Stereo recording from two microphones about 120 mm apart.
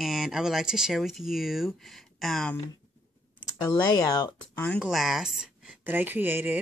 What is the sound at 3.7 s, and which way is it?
Speech, 30° left (ahead or behind).